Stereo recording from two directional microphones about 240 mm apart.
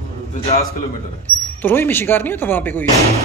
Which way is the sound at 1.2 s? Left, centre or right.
Centre.